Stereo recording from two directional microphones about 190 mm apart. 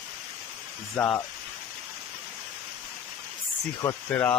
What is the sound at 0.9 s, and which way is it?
Speech, 10° left (ahead or behind).